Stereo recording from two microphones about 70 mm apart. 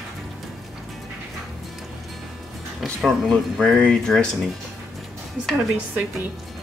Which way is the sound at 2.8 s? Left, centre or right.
Centre.